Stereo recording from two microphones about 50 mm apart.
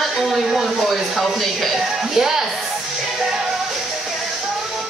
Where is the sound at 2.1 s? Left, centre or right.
Centre.